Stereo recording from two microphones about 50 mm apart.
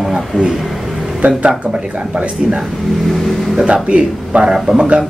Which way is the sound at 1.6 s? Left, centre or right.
Right.